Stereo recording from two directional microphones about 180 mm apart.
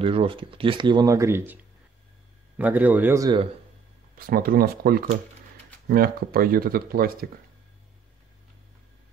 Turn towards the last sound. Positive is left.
turn(degrees=-55)  # may be behind; listen again after turning